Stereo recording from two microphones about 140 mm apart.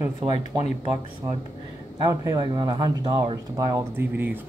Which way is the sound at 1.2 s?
20° right (ahead or behind).